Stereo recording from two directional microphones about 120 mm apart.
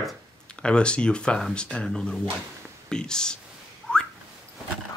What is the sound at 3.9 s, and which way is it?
Whistling, 10° left (ahead or behind).